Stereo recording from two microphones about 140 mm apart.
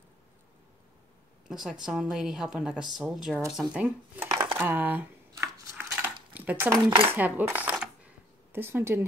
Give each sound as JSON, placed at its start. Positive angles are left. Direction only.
{"t": 1.5, "sound": "a woman's voice", "side_deg": -5}
{"t": 5.3, "sound": "a sound", "side_deg": -15}
{"t": 6.3, "sound": "dishes", "side_deg": -15}
{"t": 6.9, "sound": "cutlery", "side_deg": -40}
{"t": 7.2, "sound": "cutlery", "side_deg": -10}
{"t": 8.5, "sound": "speech", "side_deg": -15}